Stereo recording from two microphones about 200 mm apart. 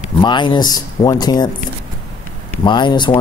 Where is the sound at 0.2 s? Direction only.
25° left (ahead or behind).